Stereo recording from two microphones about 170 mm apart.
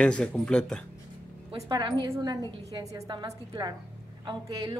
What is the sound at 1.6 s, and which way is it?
Speech, 25° right (ahead or behind).